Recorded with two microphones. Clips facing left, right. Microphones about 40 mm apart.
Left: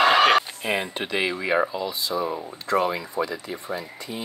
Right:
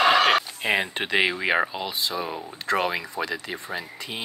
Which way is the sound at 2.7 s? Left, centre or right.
Right.